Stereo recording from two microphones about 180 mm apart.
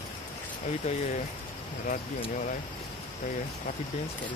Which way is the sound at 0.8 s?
40° left (ahead or behind).